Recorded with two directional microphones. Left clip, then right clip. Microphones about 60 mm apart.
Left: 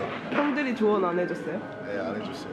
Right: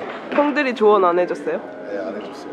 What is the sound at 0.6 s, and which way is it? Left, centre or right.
Speech, right.